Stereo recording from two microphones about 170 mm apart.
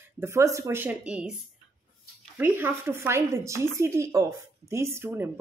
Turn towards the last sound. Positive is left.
turn(degrees=-15)  # may be behind; listen again after turning